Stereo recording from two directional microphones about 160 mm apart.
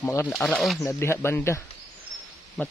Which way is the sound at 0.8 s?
15° left (ahead or behind).